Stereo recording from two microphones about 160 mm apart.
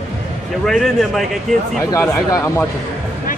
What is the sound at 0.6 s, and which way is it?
A child's voice, centre (ahead or behind).